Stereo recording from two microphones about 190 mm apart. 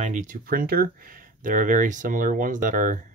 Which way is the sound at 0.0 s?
40° right (ahead or behind).